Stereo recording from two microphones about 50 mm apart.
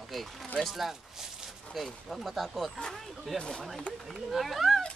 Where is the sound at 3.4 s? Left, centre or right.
Centre.